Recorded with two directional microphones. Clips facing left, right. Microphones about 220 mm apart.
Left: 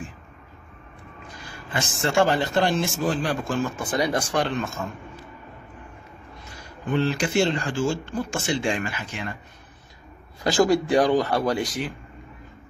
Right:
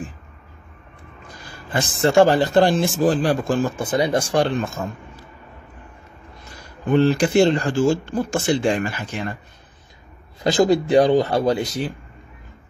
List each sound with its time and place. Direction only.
1.7 s speech: 35° right (ahead or behind)
6.9 s speech: 40° right (ahead or behind)
10.4 s speech: 20° right (ahead or behind)